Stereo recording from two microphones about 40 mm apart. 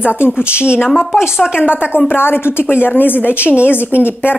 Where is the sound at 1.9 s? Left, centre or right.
Left.